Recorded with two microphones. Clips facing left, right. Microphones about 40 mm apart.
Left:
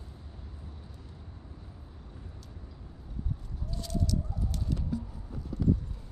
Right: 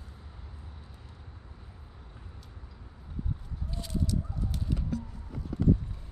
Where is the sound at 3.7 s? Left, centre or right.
Centre.